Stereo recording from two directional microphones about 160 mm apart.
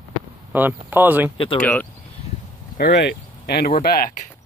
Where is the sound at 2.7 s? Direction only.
90° left.